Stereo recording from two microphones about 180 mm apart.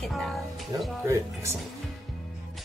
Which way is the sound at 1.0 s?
15° right (ahead or behind).